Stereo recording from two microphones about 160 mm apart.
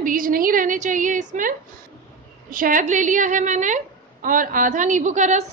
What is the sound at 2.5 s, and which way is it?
A woman's voice, 55° right (ahead or behind).